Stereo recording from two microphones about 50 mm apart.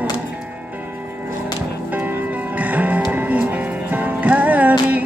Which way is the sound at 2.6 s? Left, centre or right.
Right.